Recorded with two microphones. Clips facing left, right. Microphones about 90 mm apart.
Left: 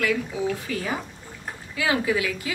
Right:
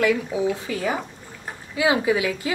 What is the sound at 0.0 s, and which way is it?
Speech, 20° right (ahead or behind).